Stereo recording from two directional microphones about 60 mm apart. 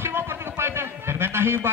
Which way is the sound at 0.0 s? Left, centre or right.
Right.